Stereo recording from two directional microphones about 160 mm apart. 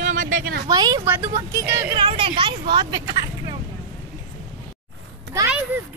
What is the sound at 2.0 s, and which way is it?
Speech, 30° right (ahead or behind).